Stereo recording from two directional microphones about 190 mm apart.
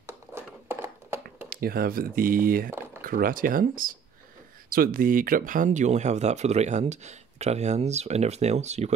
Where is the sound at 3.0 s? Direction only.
50° right (ahead or behind).